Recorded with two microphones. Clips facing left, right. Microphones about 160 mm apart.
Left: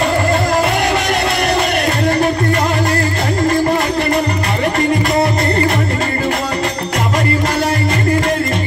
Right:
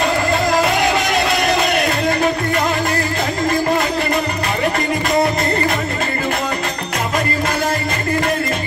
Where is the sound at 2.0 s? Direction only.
35° left (ahead or behind).